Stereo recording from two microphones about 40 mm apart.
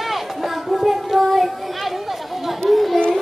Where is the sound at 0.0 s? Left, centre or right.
Centre.